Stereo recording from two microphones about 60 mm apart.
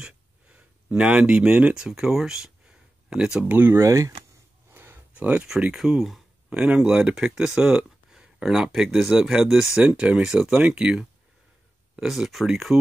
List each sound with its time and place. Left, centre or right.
0.0 s a sound: centre
1.8 s speech: centre
3.4 s speech: right
3.7 s speech: right
4.7 s a sound: right
5.1 s speech: right
5.8 s speech: centre
6.5 s speech: right
12.0 s speech: centre